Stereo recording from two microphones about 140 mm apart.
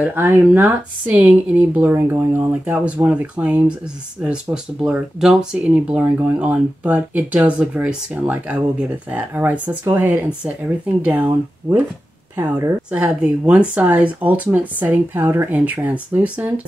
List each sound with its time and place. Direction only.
0.0 s speech: 15° right (ahead or behind)
12.9 s speech: 5° right (ahead or behind)